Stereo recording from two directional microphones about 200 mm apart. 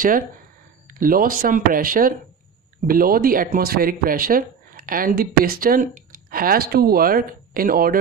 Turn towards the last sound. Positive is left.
turn(degrees=-45)  # may be behind; listen again after turning